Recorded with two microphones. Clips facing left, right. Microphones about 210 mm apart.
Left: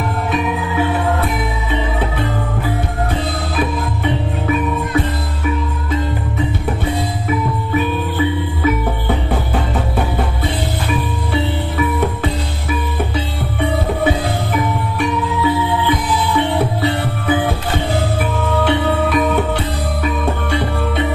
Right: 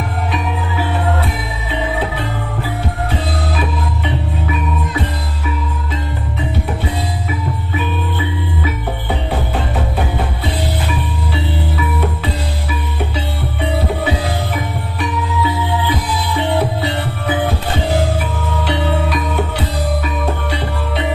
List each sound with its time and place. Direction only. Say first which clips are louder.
18.6 s music: left 2 dB; 50° left (ahead or behind)